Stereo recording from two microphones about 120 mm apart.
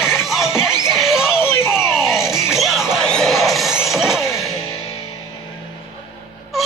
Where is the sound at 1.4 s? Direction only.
20° left (ahead or behind).